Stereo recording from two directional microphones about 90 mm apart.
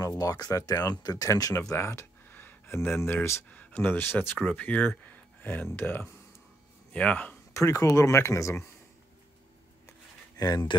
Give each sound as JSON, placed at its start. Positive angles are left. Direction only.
{"t": 0.0, "sound": "speech", "side_deg": 40}
{"t": 3.4, "sound": "speech", "side_deg": 15}
{"t": 7.5, "sound": "speech", "side_deg": 35}
{"t": 10.3, "sound": "speech", "side_deg": 45}